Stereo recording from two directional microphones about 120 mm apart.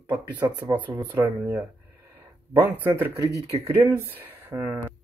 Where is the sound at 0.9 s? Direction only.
20° right (ahead or behind).